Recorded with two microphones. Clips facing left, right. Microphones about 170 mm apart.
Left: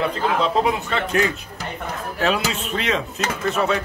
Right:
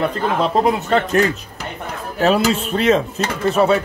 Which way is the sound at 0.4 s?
40° right (ahead or behind).